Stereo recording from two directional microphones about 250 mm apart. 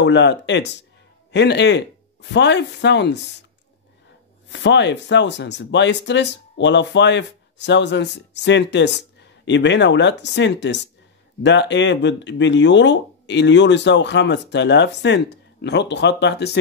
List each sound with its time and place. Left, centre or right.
0.0 s speech: left
4.5 s speech: left